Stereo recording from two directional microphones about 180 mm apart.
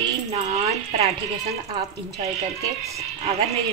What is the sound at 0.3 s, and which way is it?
Speech, 35° right (ahead or behind).